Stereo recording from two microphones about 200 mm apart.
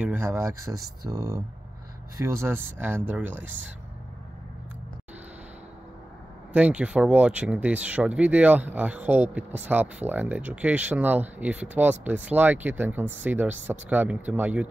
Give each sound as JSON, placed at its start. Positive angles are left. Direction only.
{"t": 0.0, "sound": "speech", "side_deg": -10}
{"t": 6.5, "sound": "speech", "side_deg": -5}